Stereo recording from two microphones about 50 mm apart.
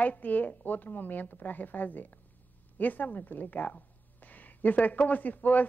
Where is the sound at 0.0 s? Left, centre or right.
Left.